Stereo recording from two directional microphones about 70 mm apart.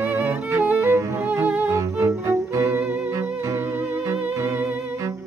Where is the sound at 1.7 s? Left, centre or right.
Right.